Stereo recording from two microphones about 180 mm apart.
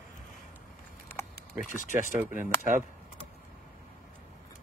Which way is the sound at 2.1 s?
10° right (ahead or behind).